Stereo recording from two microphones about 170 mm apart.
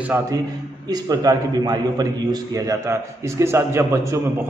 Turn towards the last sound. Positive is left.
turn(degrees=-15)  # may be behind; listen again after turning